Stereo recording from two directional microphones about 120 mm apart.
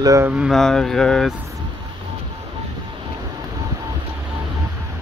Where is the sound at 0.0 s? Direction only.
25° right (ahead or behind).